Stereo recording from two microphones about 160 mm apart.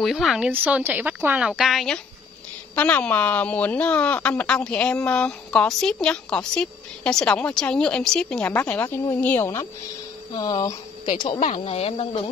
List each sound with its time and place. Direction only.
0.0 s speech: centre (ahead or behind)
10.3 s speech: 25° left (ahead or behind)
11.4 s speech: 40° left (ahead or behind)